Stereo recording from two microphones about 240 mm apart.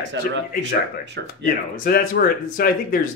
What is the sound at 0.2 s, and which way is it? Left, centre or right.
Speech, right.